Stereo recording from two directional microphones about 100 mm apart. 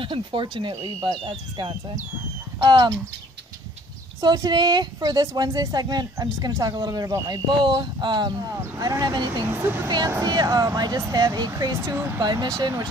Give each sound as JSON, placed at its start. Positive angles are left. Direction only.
{"t": 0.0, "sound": "speech", "side_deg": -55}
{"t": 2.6, "sound": "speech", "side_deg": -40}
{"t": 4.2, "sound": "speech", "side_deg": -45}
{"t": 9.5, "sound": "speech", "side_deg": -20}
{"t": 10.2, "sound": "speech", "side_deg": -45}
{"t": 11.8, "sound": "speech", "side_deg": -25}
{"t": 12.2, "sound": "speech", "side_deg": -45}